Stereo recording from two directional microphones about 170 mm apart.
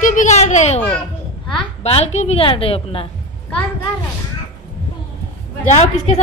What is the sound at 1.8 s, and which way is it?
A woman's voice, 35° left (ahead or behind).